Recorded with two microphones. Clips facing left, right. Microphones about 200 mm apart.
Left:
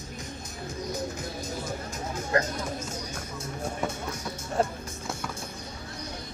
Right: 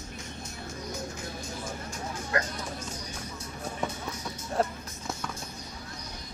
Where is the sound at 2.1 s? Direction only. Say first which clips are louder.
Left 5 dB; 40° left (ahead or behind).